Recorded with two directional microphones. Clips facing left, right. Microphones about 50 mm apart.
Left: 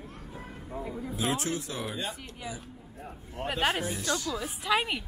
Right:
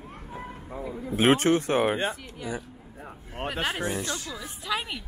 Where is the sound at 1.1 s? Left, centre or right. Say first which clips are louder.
Right 11 dB; right.